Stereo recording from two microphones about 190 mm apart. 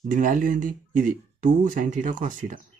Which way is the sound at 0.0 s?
40° right (ahead or behind).